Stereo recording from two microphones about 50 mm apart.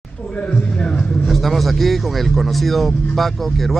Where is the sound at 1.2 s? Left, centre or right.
Centre.